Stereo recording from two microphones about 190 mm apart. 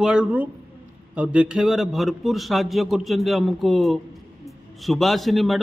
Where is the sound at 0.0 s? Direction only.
5° right (ahead or behind).